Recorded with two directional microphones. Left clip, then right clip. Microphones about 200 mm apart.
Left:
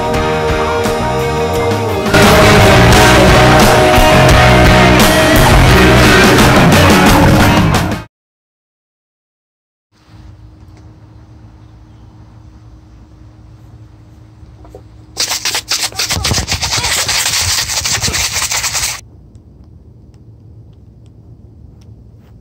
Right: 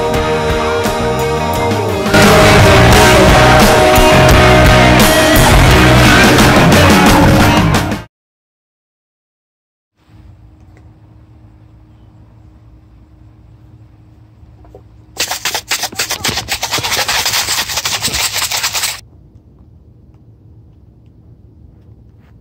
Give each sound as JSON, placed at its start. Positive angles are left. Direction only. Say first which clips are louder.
{"t": 0.0, "sound": "music", "louder": "even", "side_deg": 0}
{"t": 15.1, "sound": "a sound", "louder": "left 1 dB", "side_deg": -50}
{"t": 16.7, "sound": "rub", "louder": "even", "side_deg": -50}